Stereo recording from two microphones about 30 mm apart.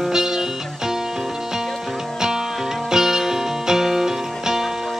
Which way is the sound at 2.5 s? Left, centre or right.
Centre.